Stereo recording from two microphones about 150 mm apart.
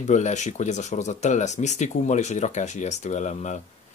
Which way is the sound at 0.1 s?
50° left (ahead or behind).